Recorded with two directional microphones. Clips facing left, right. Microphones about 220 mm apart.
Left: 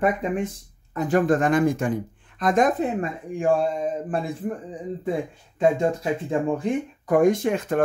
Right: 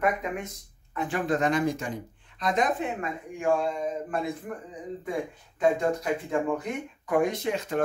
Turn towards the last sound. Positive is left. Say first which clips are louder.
# left 5 dB
turn(degrees=50)  # may be behind; listen again after turning